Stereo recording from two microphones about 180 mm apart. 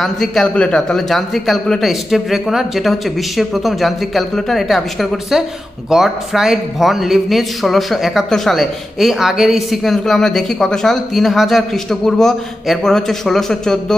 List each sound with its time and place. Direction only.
0.0 s a man's voice: centre (ahead or behind)
5.9 s a man's voice: 5° right (ahead or behind)